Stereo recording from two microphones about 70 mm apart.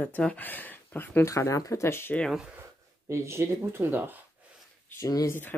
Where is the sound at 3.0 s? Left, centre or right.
Right.